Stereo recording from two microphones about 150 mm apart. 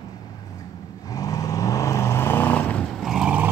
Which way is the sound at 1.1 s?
25° left (ahead or behind).